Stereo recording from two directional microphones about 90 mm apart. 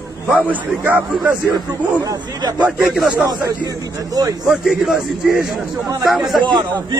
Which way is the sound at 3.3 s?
40° right (ahead or behind).